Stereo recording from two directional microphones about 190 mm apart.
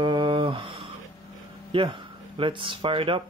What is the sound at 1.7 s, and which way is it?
Speech, 25° right (ahead or behind).